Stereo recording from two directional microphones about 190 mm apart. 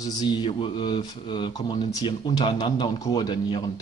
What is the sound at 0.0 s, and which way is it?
Speech, 20° left (ahead or behind).